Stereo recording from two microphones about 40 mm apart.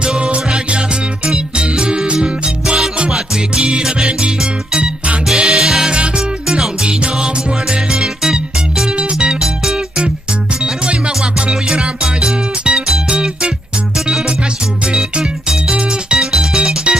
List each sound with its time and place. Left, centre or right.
0.0 s music: right
8.9 s music: right
10.6 s music: right
15.1 s music: centre
15.7 s music: right